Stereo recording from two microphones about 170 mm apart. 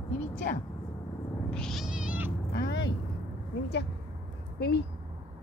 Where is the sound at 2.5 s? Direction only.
70° left (ahead or behind).